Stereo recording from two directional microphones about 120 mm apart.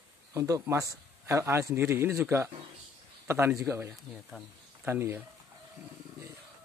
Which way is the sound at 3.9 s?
Centre (ahead or behind).